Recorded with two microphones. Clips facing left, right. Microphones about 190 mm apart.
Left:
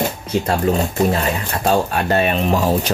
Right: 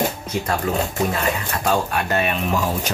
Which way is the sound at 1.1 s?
30° left (ahead or behind).